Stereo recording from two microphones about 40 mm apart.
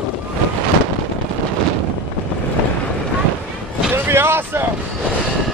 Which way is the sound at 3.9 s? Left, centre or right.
Right.